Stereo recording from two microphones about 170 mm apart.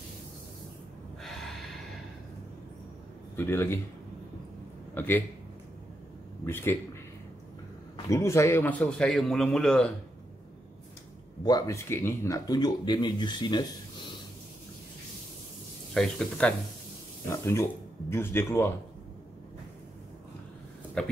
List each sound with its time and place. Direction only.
1.2 s gasp: centre (ahead or behind)
3.3 s speech: 15° left (ahead or behind)
4.9 s speech: 10° left (ahead or behind)
6.4 s speech: 15° left (ahead or behind)
8.1 s a man's voice: 15° left (ahead or behind)
11.4 s speech: 20° left (ahead or behind)
15.9 s a man's voice: centre (ahead or behind)
17.3 s speech: 15° left (ahead or behind)